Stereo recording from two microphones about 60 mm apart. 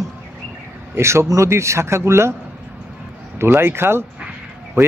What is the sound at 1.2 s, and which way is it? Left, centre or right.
Speech, right.